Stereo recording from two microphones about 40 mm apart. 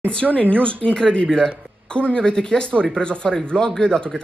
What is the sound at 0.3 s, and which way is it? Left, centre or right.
Speech, left.